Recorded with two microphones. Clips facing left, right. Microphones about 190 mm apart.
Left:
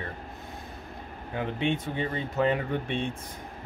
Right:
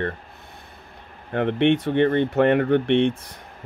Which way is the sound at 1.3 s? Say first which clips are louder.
Right 10 dB; 65° right (ahead or behind).